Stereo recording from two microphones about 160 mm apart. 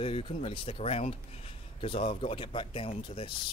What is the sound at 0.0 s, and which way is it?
Speech, 35° left (ahead or behind).